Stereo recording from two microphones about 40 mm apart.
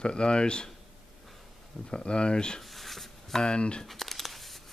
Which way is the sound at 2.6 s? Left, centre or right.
Centre.